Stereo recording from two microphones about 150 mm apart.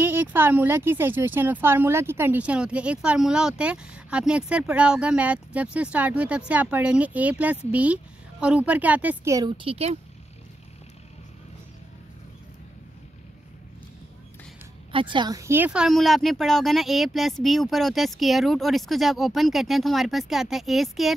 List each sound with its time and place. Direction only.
0.0 s speech: 15° right (ahead or behind)
9.7 s speech: 40° right (ahead or behind)
14.9 s speech: 35° right (ahead or behind); by 21.1 s centre (ahead or behind)